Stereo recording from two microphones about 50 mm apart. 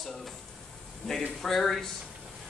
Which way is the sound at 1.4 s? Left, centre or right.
Centre.